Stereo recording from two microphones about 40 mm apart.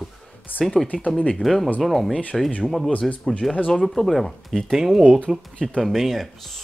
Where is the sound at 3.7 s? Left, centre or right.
Centre.